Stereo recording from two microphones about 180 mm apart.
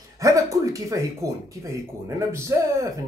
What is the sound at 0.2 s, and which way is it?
Speech, 20° right (ahead or behind).